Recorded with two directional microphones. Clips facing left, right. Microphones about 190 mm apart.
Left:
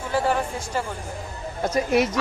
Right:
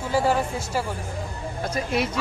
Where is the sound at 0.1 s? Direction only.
10° right (ahead or behind).